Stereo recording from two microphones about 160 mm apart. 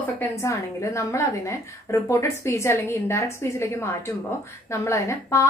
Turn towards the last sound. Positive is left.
turn(degrees=20)  # may be behind; listen again after turning